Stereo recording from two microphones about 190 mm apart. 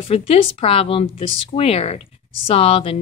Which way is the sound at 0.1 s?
30° left (ahead or behind).